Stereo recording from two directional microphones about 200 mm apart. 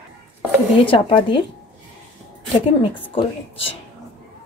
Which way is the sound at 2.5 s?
25° left (ahead or behind).